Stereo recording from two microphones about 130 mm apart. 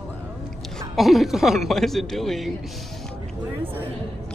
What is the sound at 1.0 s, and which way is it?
A man's voice, centre (ahead or behind).